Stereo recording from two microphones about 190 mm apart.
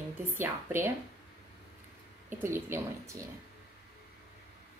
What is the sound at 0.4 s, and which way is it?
Speech, 10° right (ahead or behind).